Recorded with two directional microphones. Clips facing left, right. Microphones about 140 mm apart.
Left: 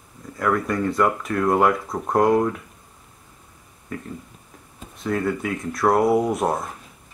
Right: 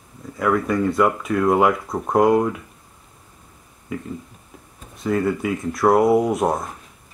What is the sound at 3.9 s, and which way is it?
Speech, 5° right (ahead or behind).